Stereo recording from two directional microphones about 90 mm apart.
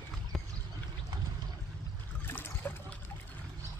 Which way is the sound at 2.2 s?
25° left (ahead or behind).